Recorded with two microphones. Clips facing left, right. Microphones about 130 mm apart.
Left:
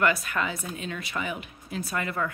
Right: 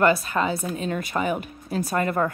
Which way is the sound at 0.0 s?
30° right (ahead or behind).